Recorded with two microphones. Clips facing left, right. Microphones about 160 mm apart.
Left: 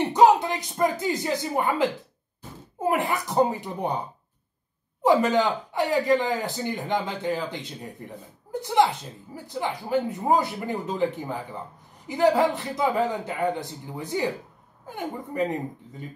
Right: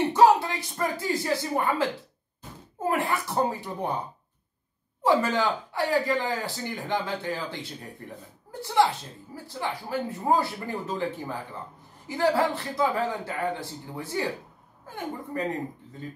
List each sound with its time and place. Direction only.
0.1 s a woman's voice: 20° left (ahead or behind)
5.0 s speech: 20° left (ahead or behind)